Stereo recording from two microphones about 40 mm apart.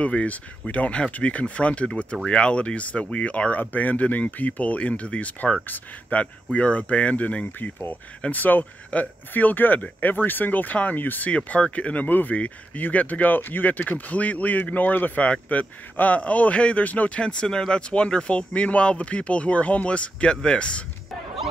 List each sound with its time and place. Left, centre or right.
0.0 s speech: left
3.7 s speech: left
8.3 s speech: left
11.3 s speech: left
12.4 s speech: left
17.2 s speech: left